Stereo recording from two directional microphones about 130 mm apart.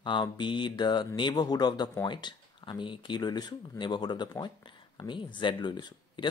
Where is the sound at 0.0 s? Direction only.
35° left (ahead or behind).